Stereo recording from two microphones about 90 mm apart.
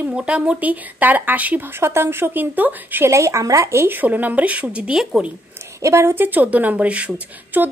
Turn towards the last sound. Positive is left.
turn(degrees=-20)  # may be behind; listen again after turning